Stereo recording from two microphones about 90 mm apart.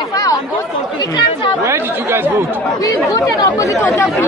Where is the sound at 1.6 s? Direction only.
25° right (ahead or behind).